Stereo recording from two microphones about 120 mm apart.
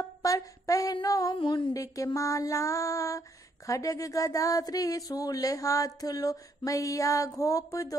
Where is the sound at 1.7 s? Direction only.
30° left (ahead or behind).